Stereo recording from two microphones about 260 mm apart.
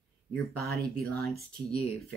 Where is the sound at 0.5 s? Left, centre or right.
Right.